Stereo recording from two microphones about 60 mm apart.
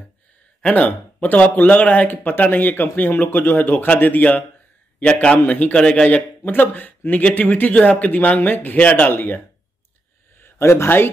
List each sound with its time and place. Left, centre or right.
0.6 s speech: left
5.0 s a man's voice: centre
5.4 s speech: left
10.6 s speech: left